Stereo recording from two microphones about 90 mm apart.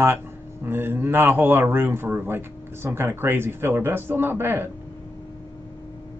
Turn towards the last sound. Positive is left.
turn(degrees=-25)  # may be behind; listen again after turning